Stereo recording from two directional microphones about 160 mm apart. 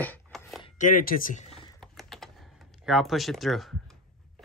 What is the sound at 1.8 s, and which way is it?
Computer keyboard, centre (ahead or behind).